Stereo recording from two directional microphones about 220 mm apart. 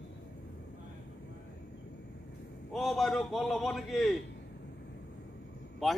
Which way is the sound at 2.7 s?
Centre (ahead or behind).